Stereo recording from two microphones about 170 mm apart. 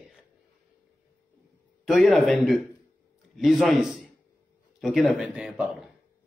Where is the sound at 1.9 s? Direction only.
Centre (ahead or behind).